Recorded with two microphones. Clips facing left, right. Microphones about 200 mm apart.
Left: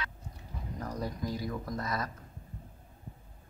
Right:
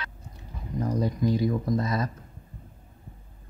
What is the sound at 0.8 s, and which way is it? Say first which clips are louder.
Speech: right 10 dB; 20° right (ahead or behind).